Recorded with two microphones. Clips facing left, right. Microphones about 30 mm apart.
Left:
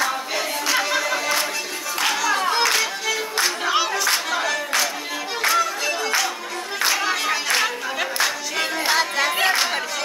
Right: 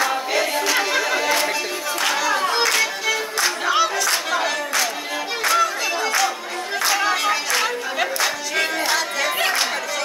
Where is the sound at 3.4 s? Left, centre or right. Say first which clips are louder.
Right 3 dB; centre.